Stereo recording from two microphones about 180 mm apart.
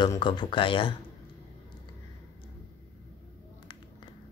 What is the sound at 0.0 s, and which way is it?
Speech, 25° left (ahead or behind).